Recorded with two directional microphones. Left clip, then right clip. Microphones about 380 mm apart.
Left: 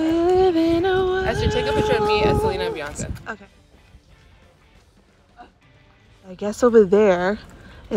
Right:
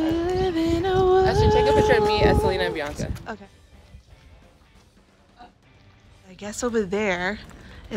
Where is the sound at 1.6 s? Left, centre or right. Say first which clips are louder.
Right 1 dB; right.